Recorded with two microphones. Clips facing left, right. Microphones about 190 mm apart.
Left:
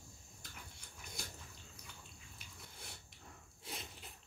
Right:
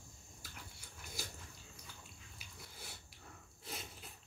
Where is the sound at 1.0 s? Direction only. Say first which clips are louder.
Right 2 dB; centre (ahead or behind).